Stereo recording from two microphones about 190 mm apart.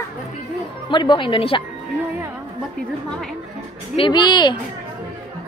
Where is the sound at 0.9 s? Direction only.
25° left (ahead or behind).